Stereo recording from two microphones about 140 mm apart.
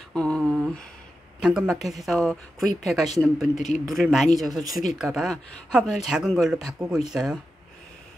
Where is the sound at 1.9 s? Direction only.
Centre (ahead or behind).